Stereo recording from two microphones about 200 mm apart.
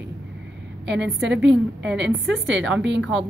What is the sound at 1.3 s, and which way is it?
Speech, 65° right (ahead or behind).